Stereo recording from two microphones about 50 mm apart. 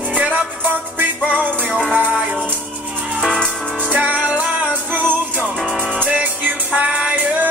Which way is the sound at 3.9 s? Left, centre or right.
Right.